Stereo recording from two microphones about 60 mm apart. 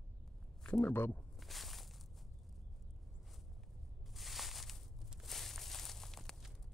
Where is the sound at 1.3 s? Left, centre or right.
Centre.